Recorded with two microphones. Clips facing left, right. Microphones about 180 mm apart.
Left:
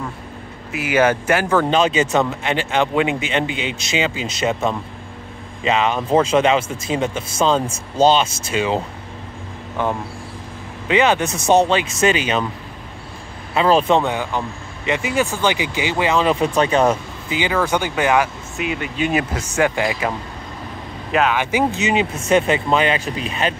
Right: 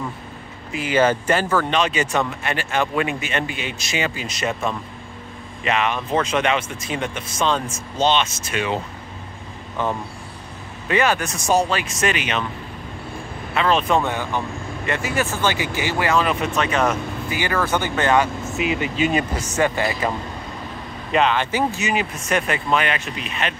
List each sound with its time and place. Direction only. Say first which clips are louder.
0.7 s speech: left 1 dB; 10° left (ahead or behind)
1.7 s speech: left 4 dB; 25° left (ahead or behind)
10.9 s speech: left 3 dB; 20° left (ahead or behind)
13.6 s speech: left 4 dB; 30° left (ahead or behind)
14.0 s speech: left 2 dB; 15° left (ahead or behind)
21.1 s speech: left 1 dB; 5° left (ahead or behind); by 23.5 s 35° left (ahead or behind)